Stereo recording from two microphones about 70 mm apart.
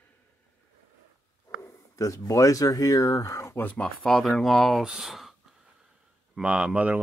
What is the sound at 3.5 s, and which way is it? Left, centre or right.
Speech, left.